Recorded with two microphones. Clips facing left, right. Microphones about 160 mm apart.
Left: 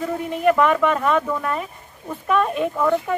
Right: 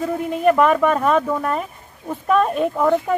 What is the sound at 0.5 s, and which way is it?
Speech, 35° right (ahead or behind).